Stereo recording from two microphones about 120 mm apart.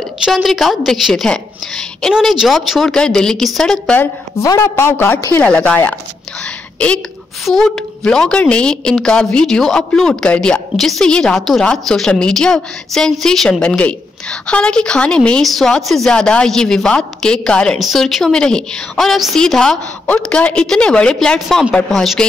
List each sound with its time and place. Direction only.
0.2 s a woman's voice: centre (ahead or behind)
4.0 s a woman's voice: 25° left (ahead or behind)
7.4 s a woman's voice: centre (ahead or behind)